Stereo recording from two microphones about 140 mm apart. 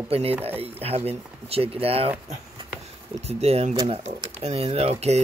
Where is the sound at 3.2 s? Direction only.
50° right (ahead or behind).